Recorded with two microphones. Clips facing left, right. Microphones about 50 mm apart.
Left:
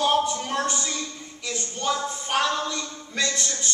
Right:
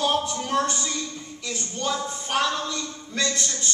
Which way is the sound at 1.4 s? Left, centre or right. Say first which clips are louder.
Left 1 dB; centre.